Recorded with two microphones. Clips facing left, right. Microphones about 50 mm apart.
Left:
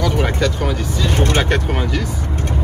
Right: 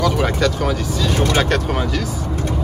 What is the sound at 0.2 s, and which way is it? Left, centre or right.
Speech, centre.